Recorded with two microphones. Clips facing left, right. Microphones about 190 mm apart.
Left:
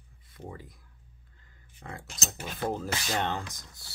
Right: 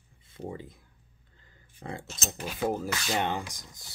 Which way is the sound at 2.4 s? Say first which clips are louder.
Right 3 dB; 10° right (ahead or behind).